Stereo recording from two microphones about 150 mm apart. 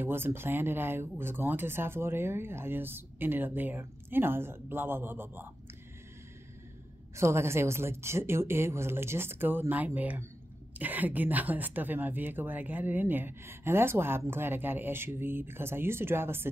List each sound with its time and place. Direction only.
0.0 s speech: 15° right (ahead or behind)
7.2 s speech: 20° right (ahead or behind)